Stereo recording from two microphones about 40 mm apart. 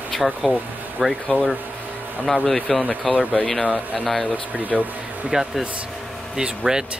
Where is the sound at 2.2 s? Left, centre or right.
Centre.